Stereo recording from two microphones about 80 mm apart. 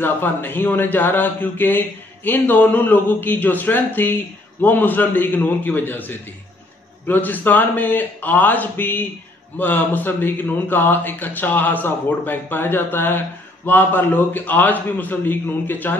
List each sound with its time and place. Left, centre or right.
0.0 s speech: left